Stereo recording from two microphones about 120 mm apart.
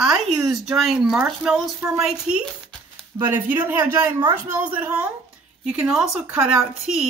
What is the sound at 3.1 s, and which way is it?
Speech, 15° right (ahead or behind).